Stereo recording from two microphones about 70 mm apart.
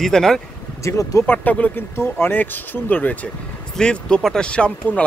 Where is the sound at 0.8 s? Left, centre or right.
Left.